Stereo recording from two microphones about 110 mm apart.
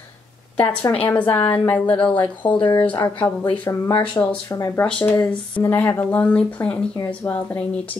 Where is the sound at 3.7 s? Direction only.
25° left (ahead or behind).